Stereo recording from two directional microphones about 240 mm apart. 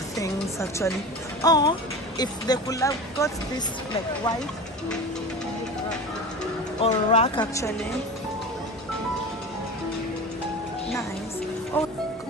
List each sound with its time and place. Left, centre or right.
0.2 s music: centre
1.4 s speech: centre
6.8 s speech: left
11.7 s speech: centre